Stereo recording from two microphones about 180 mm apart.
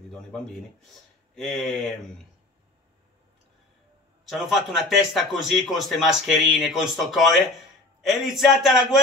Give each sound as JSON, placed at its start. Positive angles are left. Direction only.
{"t": 1.3, "sound": "speech", "side_deg": 0}
{"t": 4.3, "sound": "speech", "side_deg": 0}